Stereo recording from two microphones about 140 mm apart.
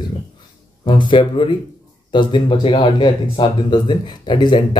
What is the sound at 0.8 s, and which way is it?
Speech, 35° left (ahead or behind).